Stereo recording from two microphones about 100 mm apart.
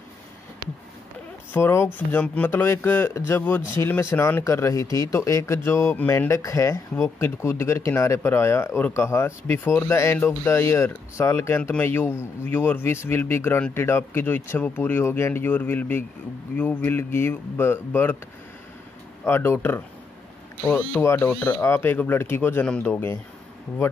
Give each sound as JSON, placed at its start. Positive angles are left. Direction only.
{"t": 1.5, "sound": "speech", "side_deg": 25}
{"t": 2.5, "sound": "speech", "side_deg": 25}
{"t": 19.2, "sound": "speech", "side_deg": 25}
{"t": 21.0, "sound": "speech", "side_deg": 25}
{"t": 21.3, "sound": "speech", "side_deg": 15}